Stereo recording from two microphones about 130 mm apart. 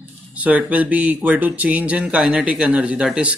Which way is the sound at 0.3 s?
10° right (ahead or behind).